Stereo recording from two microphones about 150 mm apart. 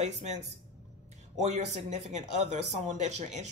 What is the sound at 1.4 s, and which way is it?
Speech, 50° right (ahead or behind).